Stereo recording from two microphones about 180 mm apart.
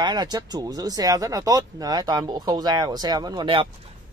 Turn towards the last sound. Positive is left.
turn(degrees=-30)  # may be behind; listen again after turning